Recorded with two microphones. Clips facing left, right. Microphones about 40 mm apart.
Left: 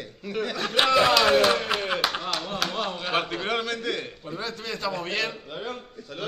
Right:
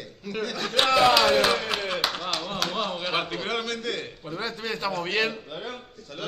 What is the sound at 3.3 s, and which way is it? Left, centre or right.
A man's voice, centre.